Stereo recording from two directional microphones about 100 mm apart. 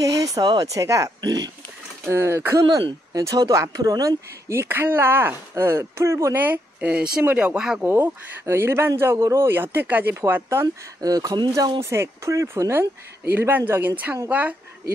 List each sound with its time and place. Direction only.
0.0 s a sound: 35° right (ahead or behind)
0.4 s speech: 40° right (ahead or behind)
2.0 s a man's voice: 25° right (ahead or behind)
4.5 s a man's voice: 25° right (ahead or behind); by 7.8 s 5° right (ahead or behind)
7.8 s a man's voice: 20° right (ahead or behind)
11.0 s speech: 40° right (ahead or behind)
11.8 s a man's voice: 25° right (ahead or behind)